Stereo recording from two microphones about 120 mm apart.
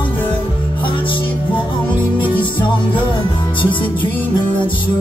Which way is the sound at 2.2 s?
40° left (ahead or behind).